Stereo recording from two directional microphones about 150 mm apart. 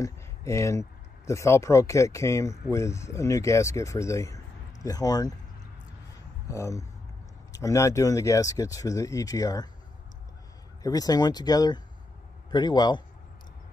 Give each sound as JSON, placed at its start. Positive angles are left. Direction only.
{"t": 0.0, "sound": "speech", "side_deg": 20}
{"t": 6.5, "sound": "speech", "side_deg": 20}
{"t": 10.8, "sound": "speech", "side_deg": 25}